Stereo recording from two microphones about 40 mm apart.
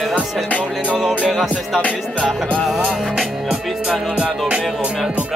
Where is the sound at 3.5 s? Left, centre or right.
Right.